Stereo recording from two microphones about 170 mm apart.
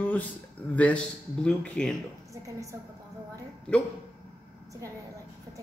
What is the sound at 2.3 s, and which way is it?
Speech, 20° right (ahead or behind).